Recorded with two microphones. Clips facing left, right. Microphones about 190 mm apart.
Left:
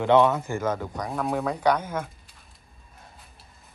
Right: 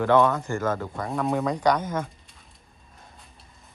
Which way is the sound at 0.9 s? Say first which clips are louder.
Right 2 dB; centre (ahead or behind).